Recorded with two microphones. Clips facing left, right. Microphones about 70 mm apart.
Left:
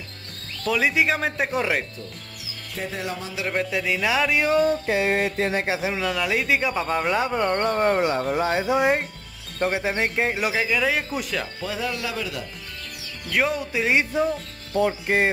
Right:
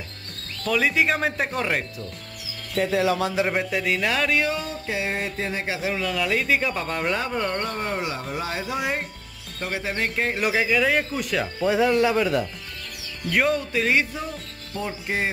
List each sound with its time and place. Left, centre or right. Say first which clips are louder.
0.7 s speech: even; centre
2.7 s music: right 8 dB; right
3.7 s speech: left 1 dB; centre
4.6 s music: left 7 dB; left
5.7 s speech: left 1 dB; centre
7.6 s speech: left 7 dB; left
8.5 s speech: left 6 dB; left; by 10.5 s centre
10.5 s speech: right 2 dB; centre
11.6 s speech: right 12 dB; right
11.9 s speech: right 9 dB; right
13.3 s speech: right 1 dB; centre
14.9 s music: left 5 dB; left